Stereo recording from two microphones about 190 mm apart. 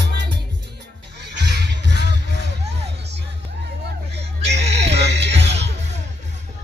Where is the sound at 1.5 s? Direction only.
60° right (ahead or behind).